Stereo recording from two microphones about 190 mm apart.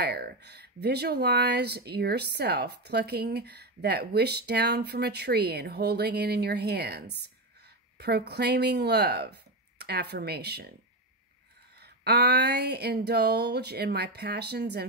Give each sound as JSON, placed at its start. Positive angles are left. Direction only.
{"t": 0.0, "sound": "speech", "side_deg": -60}
{"t": 11.8, "sound": "speech", "side_deg": -60}